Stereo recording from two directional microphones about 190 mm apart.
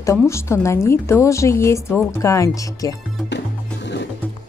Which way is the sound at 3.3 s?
65° left (ahead or behind).